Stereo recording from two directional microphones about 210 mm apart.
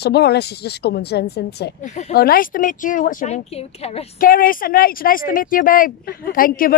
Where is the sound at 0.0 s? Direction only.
50° left (ahead or behind).